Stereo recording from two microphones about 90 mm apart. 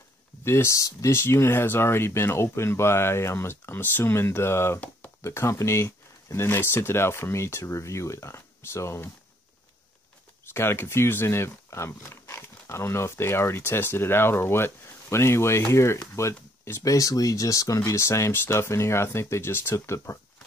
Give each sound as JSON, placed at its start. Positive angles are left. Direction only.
{"t": 0.4, "sound": "speech", "side_deg": 30}
{"t": 10.5, "sound": "speech", "side_deg": 25}